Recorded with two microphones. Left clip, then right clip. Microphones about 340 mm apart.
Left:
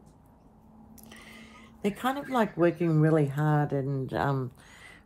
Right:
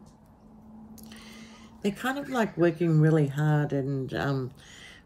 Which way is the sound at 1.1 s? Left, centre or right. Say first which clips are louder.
Left 1 dB; centre.